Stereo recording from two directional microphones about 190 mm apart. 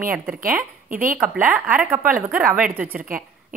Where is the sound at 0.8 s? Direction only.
45° right (ahead or behind).